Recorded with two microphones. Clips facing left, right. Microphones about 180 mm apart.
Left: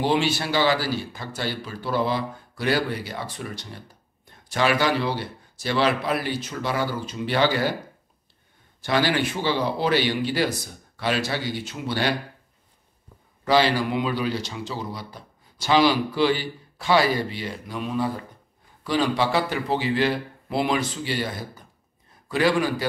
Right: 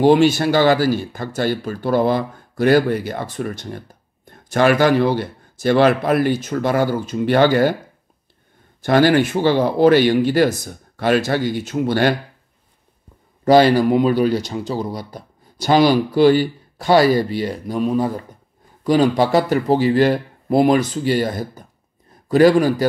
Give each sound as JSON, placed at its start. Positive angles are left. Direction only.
{"t": 0.0, "sound": "speech", "side_deg": -45}
{"t": 8.8, "sound": "speech", "side_deg": -50}
{"t": 13.5, "sound": "speech", "side_deg": -45}